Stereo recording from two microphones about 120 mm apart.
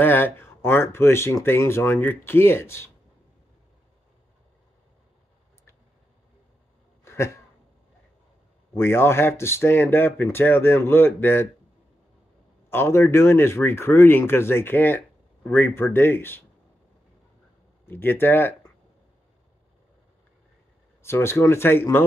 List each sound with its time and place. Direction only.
0.0 s speech: 20° left (ahead or behind)
7.1 s a sound: 20° left (ahead or behind)
8.7 s speech: 20° left (ahead or behind)
12.6 s speech: 20° left (ahead or behind)
17.8 s speech: 20° left (ahead or behind)
21.0 s speech: 20° left (ahead or behind)